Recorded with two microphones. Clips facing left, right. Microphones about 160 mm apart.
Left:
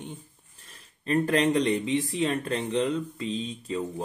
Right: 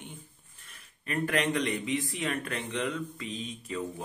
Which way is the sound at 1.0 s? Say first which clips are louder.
Left 6 dB; 30° left (ahead or behind).